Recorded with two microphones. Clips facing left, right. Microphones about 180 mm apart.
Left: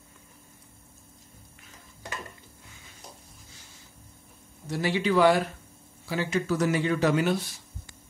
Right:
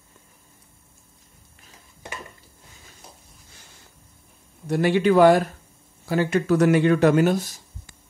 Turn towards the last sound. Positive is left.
turn(degrees=-45)  # may be behind; listen again after turning